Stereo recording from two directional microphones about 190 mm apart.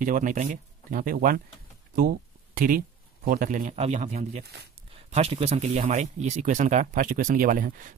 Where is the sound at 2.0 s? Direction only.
50° right (ahead or behind).